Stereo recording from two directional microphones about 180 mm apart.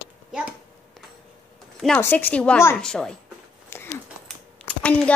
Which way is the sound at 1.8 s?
10° left (ahead or behind).